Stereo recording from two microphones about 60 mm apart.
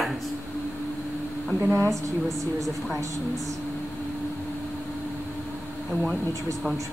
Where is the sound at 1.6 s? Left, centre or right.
Right.